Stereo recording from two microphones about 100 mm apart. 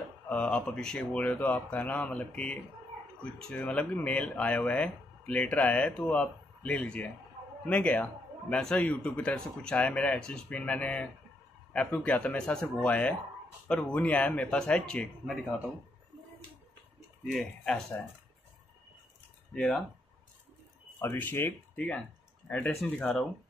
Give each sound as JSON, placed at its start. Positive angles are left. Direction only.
{"t": 0.3, "sound": "a man's voice", "side_deg": 10}
{"t": 17.3, "sound": "speech", "side_deg": 5}
{"t": 19.5, "sound": "speech", "side_deg": 5}
{"t": 21.0, "sound": "a man's voice", "side_deg": 20}